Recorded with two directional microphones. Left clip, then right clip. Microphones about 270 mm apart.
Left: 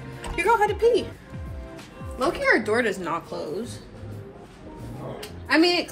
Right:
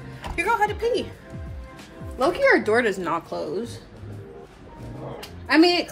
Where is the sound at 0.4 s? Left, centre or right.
Centre.